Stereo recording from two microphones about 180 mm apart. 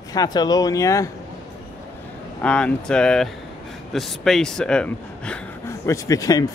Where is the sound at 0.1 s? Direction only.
20° left (ahead or behind).